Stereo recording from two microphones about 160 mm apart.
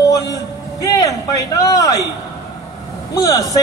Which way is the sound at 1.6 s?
20° left (ahead or behind).